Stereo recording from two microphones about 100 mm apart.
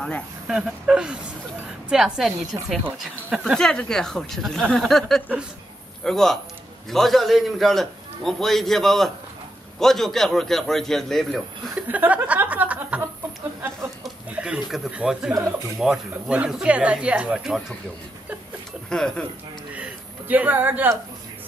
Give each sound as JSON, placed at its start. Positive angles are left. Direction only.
{"t": 0.5, "sound": "a man's voice", "side_deg": -10}
{"t": 11.7, "sound": "speech", "side_deg": -15}
{"t": 14.3, "sound": "a man's voice", "side_deg": -10}
{"t": 18.9, "sound": "speech", "side_deg": 5}
{"t": 19.7, "sound": "a sound", "side_deg": -15}